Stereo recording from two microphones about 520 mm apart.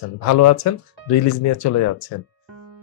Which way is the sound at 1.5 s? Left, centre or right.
Left.